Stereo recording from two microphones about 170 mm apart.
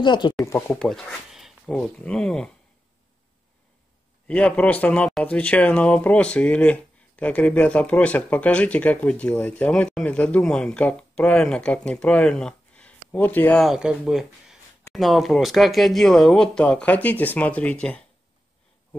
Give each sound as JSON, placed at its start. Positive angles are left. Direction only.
{"t": 0.0, "sound": "speech", "side_deg": 25}
{"t": 0.5, "sound": "speech", "side_deg": 10}
{"t": 0.8, "sound": "speech", "side_deg": 0}
{"t": 4.3, "sound": "speech", "side_deg": 5}
{"t": 13.7, "sound": "speech", "side_deg": -5}